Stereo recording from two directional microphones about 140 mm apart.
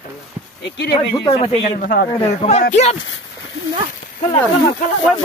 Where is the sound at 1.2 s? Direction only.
40° left (ahead or behind).